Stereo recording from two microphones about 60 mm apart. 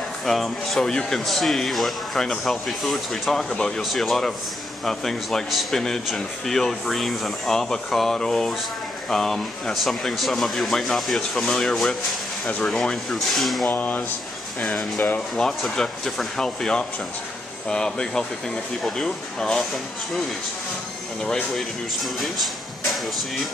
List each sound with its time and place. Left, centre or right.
0.2 s speech: centre
13.7 s speech: left
14.6 s speech: centre
21.2 s speech: centre
22.2 s a sound: centre